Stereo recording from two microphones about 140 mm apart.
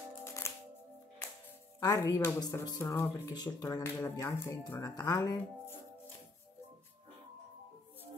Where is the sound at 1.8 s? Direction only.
25° left (ahead or behind).